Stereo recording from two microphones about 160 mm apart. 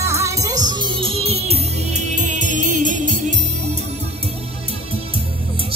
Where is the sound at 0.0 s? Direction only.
20° right (ahead or behind); by 3.3 s 50° right (ahead or behind).